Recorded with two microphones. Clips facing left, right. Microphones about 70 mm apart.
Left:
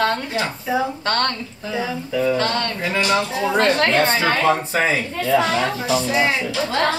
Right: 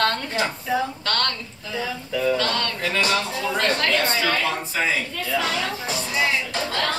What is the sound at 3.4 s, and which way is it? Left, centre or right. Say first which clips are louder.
Speech: left 7 dB; left.